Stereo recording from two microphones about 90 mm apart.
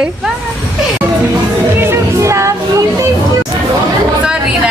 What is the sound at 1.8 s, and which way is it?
Music, 30° right (ahead or behind).